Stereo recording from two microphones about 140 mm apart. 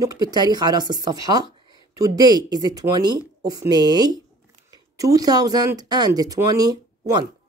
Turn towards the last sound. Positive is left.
turn(degrees=-25)  # may be behind; listen again after turning